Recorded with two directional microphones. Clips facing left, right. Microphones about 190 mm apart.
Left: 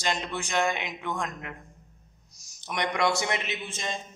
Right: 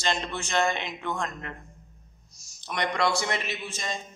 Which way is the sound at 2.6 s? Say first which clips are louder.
Even; 15° left (ahead or behind).